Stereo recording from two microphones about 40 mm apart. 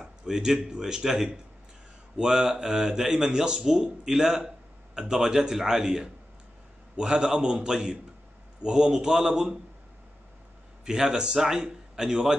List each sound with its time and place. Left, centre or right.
0.0 s a man's voice: centre
10.9 s speech: centre